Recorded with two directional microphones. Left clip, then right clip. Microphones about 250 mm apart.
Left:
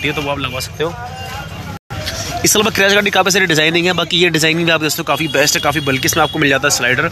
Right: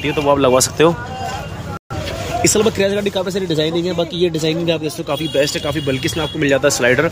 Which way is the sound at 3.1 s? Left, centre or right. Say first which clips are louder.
Left 8 dB; left.